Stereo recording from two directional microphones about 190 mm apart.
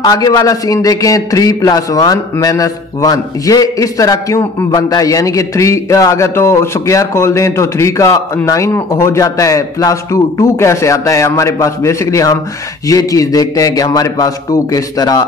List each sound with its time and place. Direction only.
0.0 s a man's voice: 20° left (ahead or behind)